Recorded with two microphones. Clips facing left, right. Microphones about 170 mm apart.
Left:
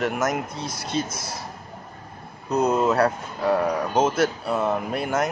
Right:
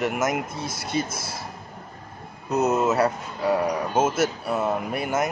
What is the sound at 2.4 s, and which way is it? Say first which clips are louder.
Speech: left 1 dB; 5° right (ahead or behind).